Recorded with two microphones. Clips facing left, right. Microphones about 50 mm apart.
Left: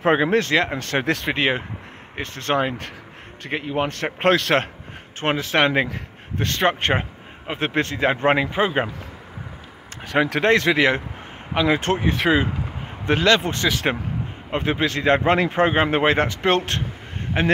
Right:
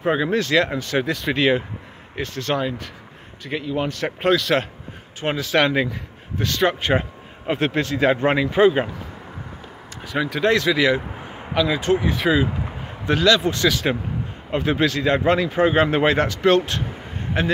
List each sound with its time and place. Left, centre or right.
0.2 s a man's voice: left
5.2 s speech: left
7.5 s a man's voice: left
10.0 s a man's voice: left
10.5 s a man's voice: left
12.2 s a man's voice: centre
13.0 s a man's voice: left
15.7 s a man's voice: left